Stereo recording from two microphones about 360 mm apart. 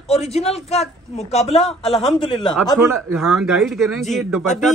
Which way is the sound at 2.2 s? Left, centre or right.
Centre.